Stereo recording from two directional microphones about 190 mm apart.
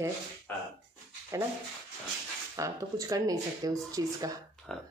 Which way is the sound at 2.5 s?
15° right (ahead or behind).